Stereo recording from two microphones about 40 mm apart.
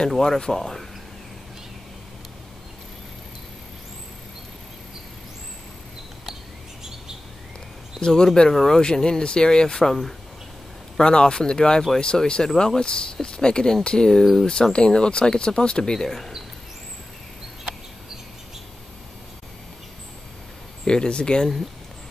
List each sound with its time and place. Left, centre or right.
0.2 s speech: centre
8.0 s speech: centre
9.8 s speech: centre
11.0 s speech: left
20.8 s speech: left